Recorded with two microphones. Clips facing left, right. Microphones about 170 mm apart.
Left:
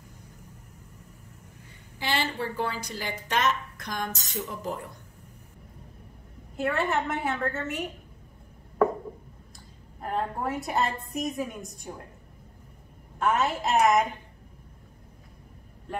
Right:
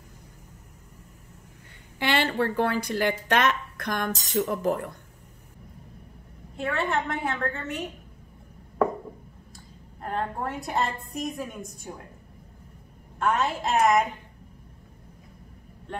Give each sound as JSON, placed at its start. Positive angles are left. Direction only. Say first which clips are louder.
{"t": 2.0, "sound": "speech", "louder": "right 5 dB", "side_deg": -65}
{"t": 6.5, "sound": "a woman's voice", "louder": "left 1 dB", "side_deg": 0}
{"t": 10.0, "sound": "a woman's voice", "louder": "left 1 dB", "side_deg": 0}
{"t": 13.2, "sound": "a woman's voice", "louder": "even", "side_deg": 0}